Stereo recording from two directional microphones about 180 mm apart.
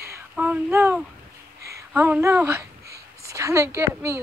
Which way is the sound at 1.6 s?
15° right (ahead or behind).